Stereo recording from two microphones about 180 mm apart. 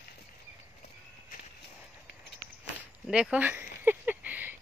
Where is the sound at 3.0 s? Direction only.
5° right (ahead or behind).